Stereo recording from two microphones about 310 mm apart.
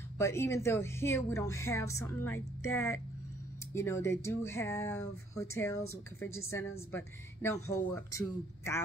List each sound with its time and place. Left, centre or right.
0.2 s speech: centre
2.3 s speech: left
3.7 s speech: centre